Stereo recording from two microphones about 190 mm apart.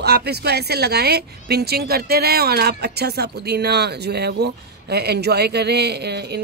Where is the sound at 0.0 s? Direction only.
60° right (ahead or behind).